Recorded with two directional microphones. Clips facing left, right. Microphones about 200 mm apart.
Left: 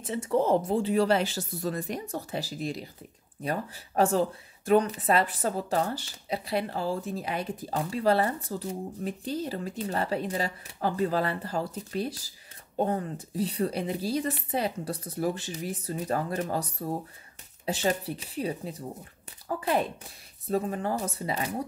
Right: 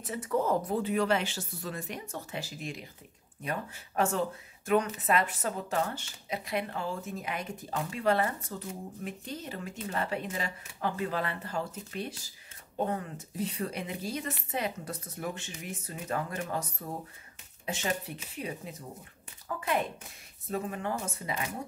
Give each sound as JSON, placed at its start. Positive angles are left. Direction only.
{"t": 0.0, "sound": "speech", "side_deg": 25}